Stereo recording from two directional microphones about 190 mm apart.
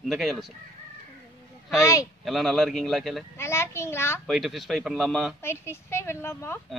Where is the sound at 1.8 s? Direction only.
15° left (ahead or behind).